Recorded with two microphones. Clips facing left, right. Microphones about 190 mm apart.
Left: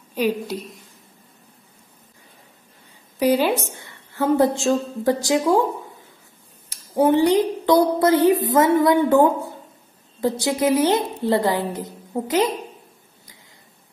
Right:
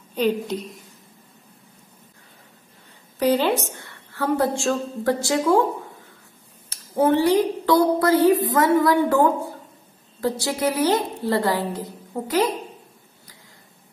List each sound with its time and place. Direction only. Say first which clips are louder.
0.1 s a woman's voice: even; 10° left (ahead or behind)
3.2 s a woman's voice: left 1 dB; 10° left (ahead or behind)
6.7 s speech: left 2 dB; 15° left (ahead or behind)